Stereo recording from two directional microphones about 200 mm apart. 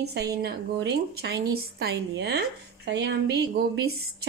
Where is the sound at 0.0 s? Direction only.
55° right (ahead or behind).